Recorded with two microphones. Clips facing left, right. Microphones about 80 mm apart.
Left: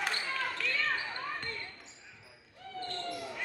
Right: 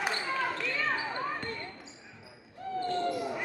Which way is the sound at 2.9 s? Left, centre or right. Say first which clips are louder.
Right 9 dB; centre.